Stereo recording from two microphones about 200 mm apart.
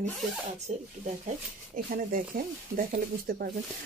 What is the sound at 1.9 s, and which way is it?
Speech, 45° right (ahead or behind).